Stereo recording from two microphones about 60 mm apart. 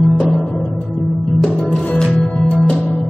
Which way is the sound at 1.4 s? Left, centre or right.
Centre.